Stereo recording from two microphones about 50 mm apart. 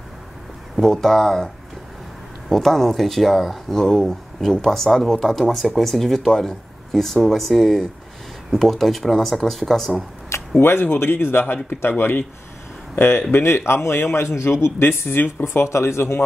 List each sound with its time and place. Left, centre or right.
0.7 s speech: centre
2.5 s speech: centre
10.6 s speech: left
12.9 s speech: left
15.4 s speech: left